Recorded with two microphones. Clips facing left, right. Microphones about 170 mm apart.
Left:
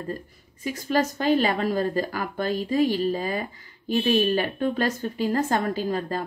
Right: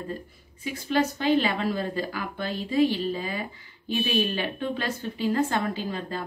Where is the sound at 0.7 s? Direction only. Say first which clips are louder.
Left 1 dB; 45° left (ahead or behind).